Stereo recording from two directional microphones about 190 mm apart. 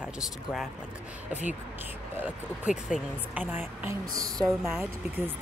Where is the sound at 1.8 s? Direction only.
10° right (ahead or behind).